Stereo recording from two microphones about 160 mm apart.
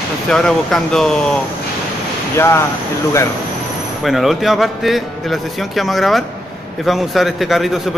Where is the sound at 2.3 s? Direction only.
15° left (ahead or behind).